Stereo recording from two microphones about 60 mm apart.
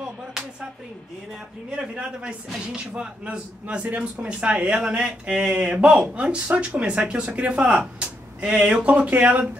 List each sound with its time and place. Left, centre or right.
1.8 s a man's voice: centre